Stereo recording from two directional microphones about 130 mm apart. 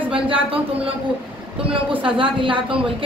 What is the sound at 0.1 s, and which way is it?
Speech, 45° right (ahead or behind).